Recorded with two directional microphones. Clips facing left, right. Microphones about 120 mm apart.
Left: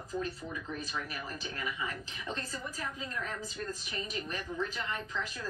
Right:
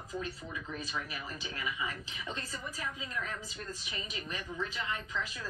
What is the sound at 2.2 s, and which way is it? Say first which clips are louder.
Speech: left 2 dB; 45° left (ahead or behind).